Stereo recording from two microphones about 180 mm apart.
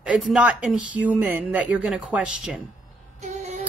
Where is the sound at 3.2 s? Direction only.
40° right (ahead or behind).